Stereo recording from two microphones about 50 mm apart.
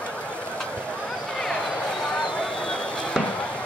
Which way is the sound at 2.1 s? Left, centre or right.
Centre.